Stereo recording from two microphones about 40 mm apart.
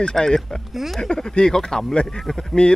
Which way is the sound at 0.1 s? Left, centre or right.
Centre.